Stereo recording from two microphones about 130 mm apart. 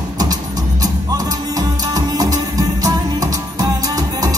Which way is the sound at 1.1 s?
30° right (ahead or behind).